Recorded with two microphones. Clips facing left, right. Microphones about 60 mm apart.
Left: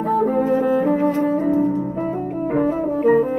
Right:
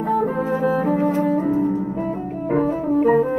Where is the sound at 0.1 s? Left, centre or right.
Centre.